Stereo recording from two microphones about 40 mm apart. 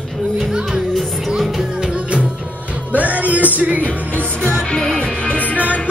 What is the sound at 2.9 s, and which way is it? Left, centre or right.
Music, right.